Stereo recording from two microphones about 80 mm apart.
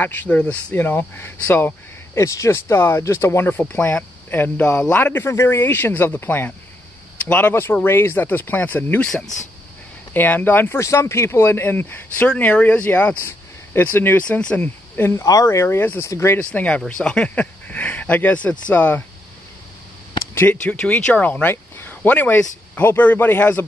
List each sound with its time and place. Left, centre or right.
0.0 s speech: left
2.1 s speech: left
9.0 s speech: centre
10.1 s speech: left
10.8 s speech: left
14.2 s speech: centre; by 16.3 s left
16.3 s speech: centre
20.6 s speech: centre